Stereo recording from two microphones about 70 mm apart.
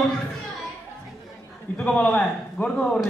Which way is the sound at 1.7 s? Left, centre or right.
Centre.